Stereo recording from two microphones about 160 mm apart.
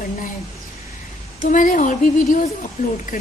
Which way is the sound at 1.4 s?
55° left (ahead or behind).